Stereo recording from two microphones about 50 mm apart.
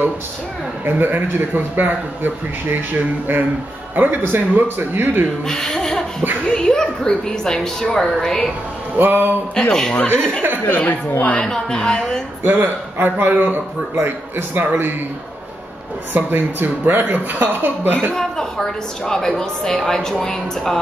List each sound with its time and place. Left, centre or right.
0.8 s speech: right
5.5 s a woman's voice: centre
8.9 s speech: right
9.6 s a woman's voice: centre
10.7 s a woman's voice: left
11.4 s a woman's voice: centre
12.4 s speech: right
16.1 s speech: right
18.1 s a woman's voice: centre